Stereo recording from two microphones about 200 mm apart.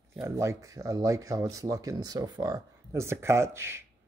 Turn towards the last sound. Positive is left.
turn(degrees=-10)  # may be behind; listen again after turning